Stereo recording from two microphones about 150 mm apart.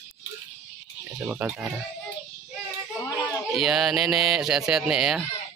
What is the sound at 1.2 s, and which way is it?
Speech, 15° right (ahead or behind).